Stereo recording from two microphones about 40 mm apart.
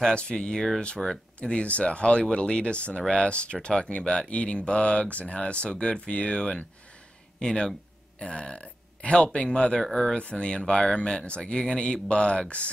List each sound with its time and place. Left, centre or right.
0.1 s speech: left
9.8 s speech: centre
10.1 s speech: left